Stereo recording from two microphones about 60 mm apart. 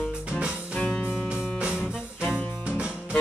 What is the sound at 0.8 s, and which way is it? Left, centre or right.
Music, left.